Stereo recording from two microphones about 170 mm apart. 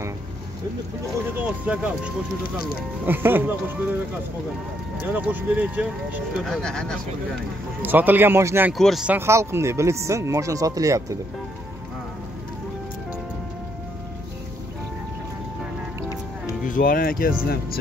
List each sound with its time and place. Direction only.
1.3 s speech: 10° right (ahead or behind)
5.0 s speech: 10° right (ahead or behind)
6.6 s speech: 5° left (ahead or behind)
7.8 s speech: 10° right (ahead or behind)
8.7 s speech: centre (ahead or behind); by 11.1 s 20° right (ahead or behind)
16.6 s speech: 50° left (ahead or behind)